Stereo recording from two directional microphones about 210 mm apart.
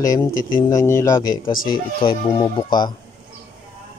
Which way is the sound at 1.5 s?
40° left (ahead or behind).